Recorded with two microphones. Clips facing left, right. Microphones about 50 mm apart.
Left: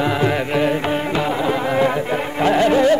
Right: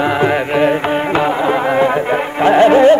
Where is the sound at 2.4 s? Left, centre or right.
Right.